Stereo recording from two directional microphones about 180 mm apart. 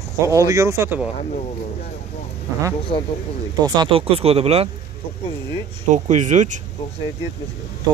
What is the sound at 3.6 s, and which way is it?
Speech, 25° right (ahead or behind).